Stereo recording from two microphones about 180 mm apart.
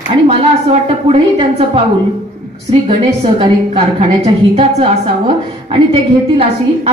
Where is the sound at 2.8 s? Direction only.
30° right (ahead or behind).